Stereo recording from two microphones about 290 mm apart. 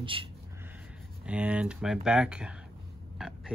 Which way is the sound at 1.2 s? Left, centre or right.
Centre.